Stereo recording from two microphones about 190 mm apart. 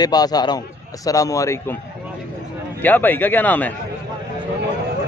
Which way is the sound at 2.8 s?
10° left (ahead or behind).